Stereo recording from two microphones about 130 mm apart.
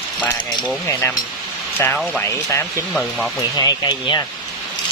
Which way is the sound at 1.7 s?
15° left (ahead or behind).